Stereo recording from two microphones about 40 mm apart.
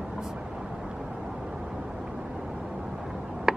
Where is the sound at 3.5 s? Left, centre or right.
Centre.